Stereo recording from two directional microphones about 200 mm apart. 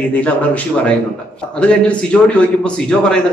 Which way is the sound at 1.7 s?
5° left (ahead or behind).